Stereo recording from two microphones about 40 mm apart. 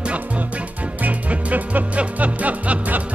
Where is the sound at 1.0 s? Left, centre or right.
Right.